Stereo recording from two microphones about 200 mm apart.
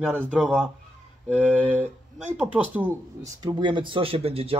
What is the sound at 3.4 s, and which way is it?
Speech, 25° right (ahead or behind).